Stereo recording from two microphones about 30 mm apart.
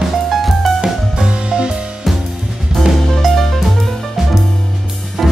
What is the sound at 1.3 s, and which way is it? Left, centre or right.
Music, right.